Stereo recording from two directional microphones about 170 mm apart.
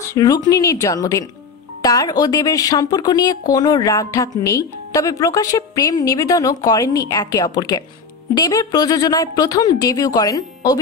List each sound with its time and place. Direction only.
0.1 s speech: 20° left (ahead or behind)